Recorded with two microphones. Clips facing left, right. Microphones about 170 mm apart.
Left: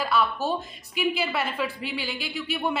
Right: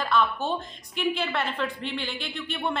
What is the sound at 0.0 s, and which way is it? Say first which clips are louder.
A woman's voice: even; 5° left (ahead or behind).